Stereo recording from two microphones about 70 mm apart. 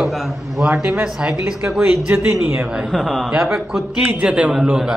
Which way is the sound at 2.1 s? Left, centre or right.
Right.